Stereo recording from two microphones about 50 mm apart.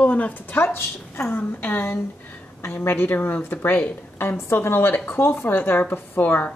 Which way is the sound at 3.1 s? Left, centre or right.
Left.